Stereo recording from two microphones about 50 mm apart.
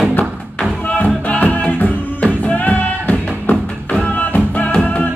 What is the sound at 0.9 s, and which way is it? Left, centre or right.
Music, left.